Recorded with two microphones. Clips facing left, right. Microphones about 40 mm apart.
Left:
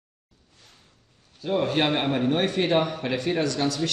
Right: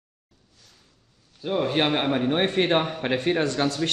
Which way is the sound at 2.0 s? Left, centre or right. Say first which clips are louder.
Right 1 dB; right.